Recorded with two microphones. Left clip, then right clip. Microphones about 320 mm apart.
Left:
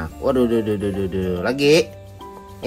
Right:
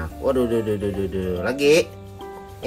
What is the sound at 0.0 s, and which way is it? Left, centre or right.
Speech, centre.